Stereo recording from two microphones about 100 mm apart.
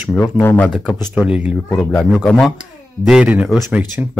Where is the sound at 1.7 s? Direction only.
5° left (ahead or behind).